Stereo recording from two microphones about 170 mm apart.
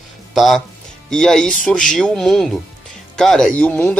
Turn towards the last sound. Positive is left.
turn(degrees=10)  # may be behind; listen again after turning